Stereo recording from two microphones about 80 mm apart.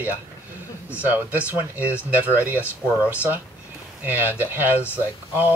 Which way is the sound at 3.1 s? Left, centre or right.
Right.